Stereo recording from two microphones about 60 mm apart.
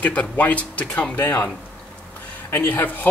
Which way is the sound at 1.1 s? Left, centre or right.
Left.